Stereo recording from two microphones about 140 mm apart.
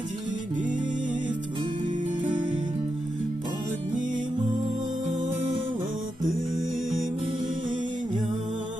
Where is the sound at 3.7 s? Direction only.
65° right (ahead or behind).